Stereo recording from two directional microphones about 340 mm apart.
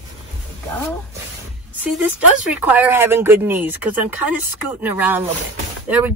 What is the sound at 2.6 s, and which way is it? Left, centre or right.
Speech, centre.